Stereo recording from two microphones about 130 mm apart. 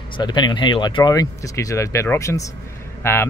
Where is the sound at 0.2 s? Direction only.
35° left (ahead or behind).